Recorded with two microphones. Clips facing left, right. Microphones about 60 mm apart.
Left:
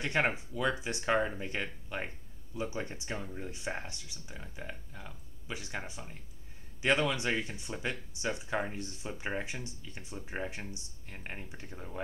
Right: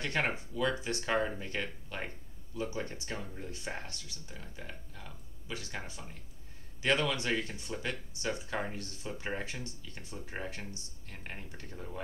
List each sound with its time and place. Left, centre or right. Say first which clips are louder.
0.0 s speech: left 2 dB; centre